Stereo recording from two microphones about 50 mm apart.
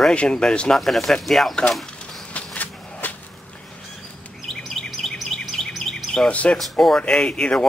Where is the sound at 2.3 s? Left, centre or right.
Left.